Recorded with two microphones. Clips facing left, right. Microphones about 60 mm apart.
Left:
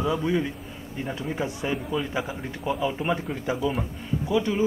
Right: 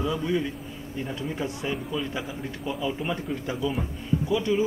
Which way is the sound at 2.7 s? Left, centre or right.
Left.